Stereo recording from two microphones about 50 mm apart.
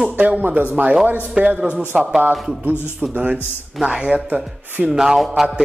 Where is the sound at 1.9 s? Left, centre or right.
Centre.